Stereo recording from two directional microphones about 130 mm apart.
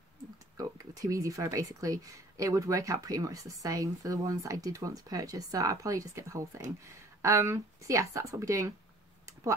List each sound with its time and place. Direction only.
0.6 s speech: 25° right (ahead or behind)